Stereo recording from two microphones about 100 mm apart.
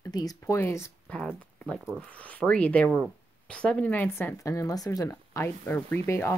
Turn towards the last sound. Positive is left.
turn(degrees=25)  # may be behind; listen again after turning